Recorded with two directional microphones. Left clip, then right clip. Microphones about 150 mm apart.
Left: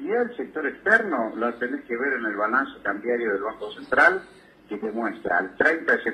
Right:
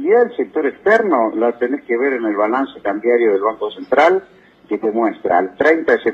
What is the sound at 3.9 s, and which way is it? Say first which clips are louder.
Speech: right 6 dB; 35° right (ahead or behind).